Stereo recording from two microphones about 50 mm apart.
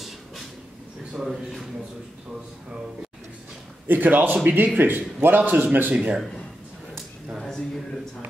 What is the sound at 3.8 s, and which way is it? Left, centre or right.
A man's voice, right.